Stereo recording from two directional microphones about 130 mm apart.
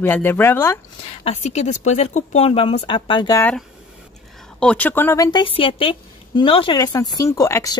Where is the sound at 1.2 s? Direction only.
55° left (ahead or behind); by 3.3 s 35° left (ahead or behind).